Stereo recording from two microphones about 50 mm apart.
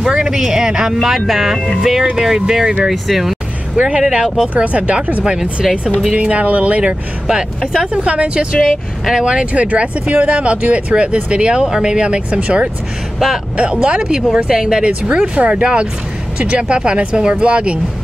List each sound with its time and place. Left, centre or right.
0.0 s speech: centre
1.0 s speech: centre
3.7 s speech: right
4.0 s speech: centre
5.2 s speech: centre
6.8 s speech: centre
7.9 s speech: right
15.1 s speech: right